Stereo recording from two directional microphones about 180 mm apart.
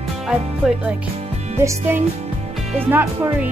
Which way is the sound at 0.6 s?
Centre (ahead or behind).